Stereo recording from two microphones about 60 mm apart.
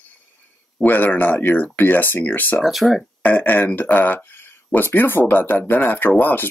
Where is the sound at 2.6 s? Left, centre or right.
Centre.